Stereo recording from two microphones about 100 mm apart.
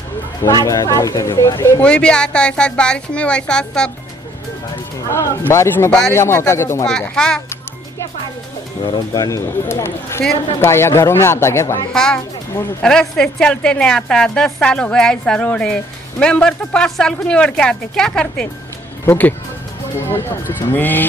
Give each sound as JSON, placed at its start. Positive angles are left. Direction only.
{"t": 0.4, "sound": "speech", "side_deg": 35}
{"t": 1.8, "sound": "a woman's voice", "side_deg": 10}
{"t": 5.1, "sound": "speech", "side_deg": 25}
{"t": 5.9, "sound": "speech", "side_deg": 5}
{"t": 6.1, "sound": "speech", "side_deg": 25}
{"t": 6.9, "sound": "a woman's voice", "side_deg": 10}
{"t": 8.8, "sound": "speech", "side_deg": 45}
{"t": 9.7, "sound": "speech", "side_deg": 25}
{"t": 11.9, "sound": "a woman's voice", "side_deg": 5}